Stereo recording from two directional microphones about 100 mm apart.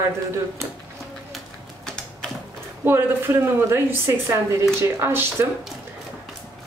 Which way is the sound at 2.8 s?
25° right (ahead or behind).